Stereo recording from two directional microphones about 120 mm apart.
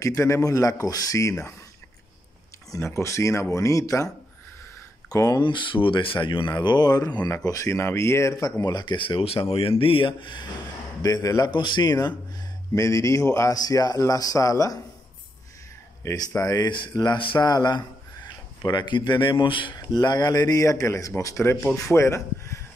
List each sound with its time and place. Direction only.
0.0 s speech: 25° left (ahead or behind)
2.7 s speech: 25° left (ahead or behind)
5.1 s speech: 30° left (ahead or behind)
5.4 s speech: 40° left (ahead or behind)
11.0 s speech: 30° left (ahead or behind)
16.0 s speech: 25° left (ahead or behind)
21.5 s speech: 5° left (ahead or behind)
21.9 s speech: 25° left (ahead or behind)